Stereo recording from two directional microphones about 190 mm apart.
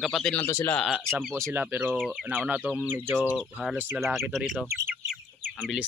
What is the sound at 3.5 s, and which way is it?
A man's voice, 5° left (ahead or behind).